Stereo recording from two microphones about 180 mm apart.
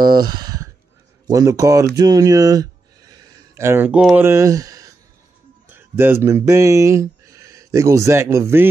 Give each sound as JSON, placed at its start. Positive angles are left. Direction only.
{"t": 0.0, "sound": "speech", "side_deg": -25}
{"t": 4.3, "sound": "speech", "side_deg": -15}